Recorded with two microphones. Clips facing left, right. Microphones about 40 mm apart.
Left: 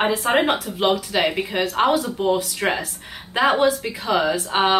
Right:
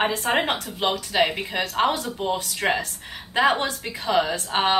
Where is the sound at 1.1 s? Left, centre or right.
Centre.